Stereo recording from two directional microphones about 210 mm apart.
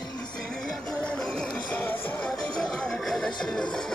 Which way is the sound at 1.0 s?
5° left (ahead or behind).